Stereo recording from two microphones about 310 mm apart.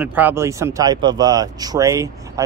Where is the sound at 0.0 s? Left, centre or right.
Centre.